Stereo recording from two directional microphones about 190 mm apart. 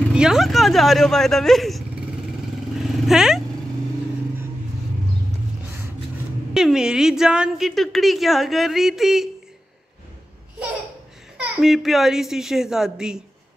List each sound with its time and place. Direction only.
0.1 s a woman's voice: 5° right (ahead or behind)
6.5 s a woman's voice: 5° right (ahead or behind)
11.3 s a woman's voice: centre (ahead or behind)